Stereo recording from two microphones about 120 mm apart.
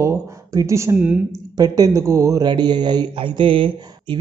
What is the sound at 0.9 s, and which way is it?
Speech, 15° right (ahead or behind).